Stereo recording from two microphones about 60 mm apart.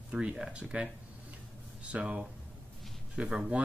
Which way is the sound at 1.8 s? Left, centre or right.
Centre.